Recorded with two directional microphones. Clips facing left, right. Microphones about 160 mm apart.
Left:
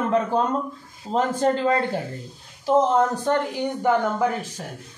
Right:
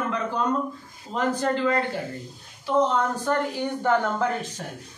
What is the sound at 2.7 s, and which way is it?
Speech, 40° left (ahead or behind).